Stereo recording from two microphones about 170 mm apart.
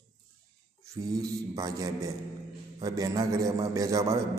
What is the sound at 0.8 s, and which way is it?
A man's voice, 20° right (ahead or behind).